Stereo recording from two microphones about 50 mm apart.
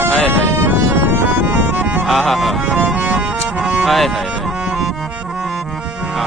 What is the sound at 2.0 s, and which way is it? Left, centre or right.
Music, centre.